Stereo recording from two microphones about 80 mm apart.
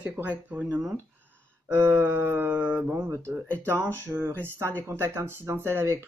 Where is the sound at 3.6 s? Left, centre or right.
Right.